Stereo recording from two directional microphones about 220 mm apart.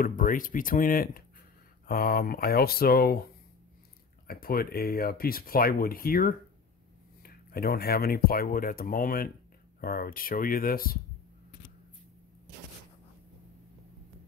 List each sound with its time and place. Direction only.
0.0 s speech: 40° left (ahead or behind)
4.3 s speech: 45° left (ahead or behind)